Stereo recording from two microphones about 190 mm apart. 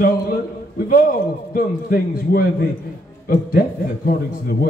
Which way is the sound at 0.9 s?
50° left (ahead or behind).